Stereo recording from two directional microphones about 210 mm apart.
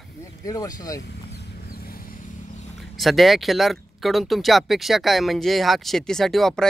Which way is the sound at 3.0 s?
Centre (ahead or behind).